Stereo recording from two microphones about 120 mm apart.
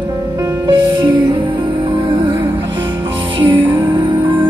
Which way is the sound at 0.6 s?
40° right (ahead or behind).